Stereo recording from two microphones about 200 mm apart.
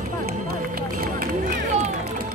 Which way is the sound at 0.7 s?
45° right (ahead or behind).